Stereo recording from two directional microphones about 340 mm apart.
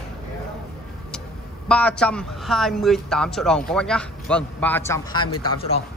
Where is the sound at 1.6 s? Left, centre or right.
Centre.